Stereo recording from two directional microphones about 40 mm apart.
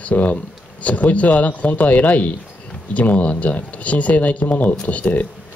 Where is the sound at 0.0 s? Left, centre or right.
Left.